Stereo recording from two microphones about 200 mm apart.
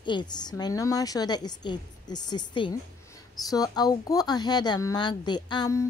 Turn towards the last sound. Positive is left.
turn(degrees=15)  # may be behind; listen again after turning